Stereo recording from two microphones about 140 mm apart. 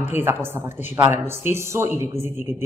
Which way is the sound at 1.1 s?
15° right (ahead or behind).